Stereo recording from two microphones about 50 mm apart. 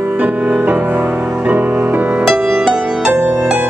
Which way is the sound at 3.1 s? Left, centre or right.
Right.